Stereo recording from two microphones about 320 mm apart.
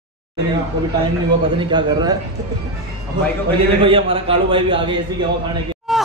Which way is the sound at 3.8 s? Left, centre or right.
Centre.